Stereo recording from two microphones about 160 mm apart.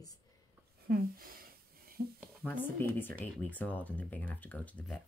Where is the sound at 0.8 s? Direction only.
65° right (ahead or behind).